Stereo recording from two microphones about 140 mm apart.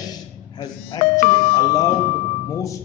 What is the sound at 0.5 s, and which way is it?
Speech, 30° left (ahead or behind).